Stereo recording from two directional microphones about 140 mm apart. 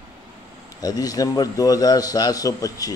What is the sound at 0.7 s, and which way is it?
A man's voice, 25° left (ahead or behind).